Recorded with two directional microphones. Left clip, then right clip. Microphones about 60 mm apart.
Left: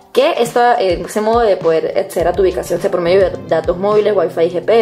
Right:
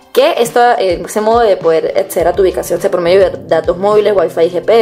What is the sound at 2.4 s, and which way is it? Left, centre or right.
Speech, right.